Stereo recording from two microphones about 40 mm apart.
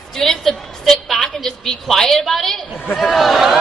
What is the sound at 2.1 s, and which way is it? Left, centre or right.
A woman's voice, centre.